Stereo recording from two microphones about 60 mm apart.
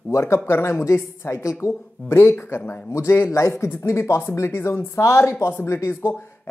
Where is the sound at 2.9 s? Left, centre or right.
Left.